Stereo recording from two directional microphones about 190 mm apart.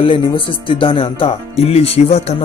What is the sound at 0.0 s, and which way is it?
Speech, 25° left (ahead or behind).